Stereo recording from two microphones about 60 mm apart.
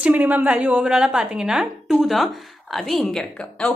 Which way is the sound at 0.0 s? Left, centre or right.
Right.